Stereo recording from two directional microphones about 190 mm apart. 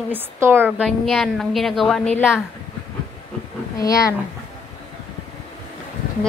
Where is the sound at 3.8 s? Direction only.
15° left (ahead or behind).